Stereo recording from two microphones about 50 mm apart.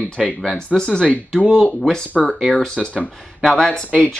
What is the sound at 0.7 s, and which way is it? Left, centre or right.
Speech, centre.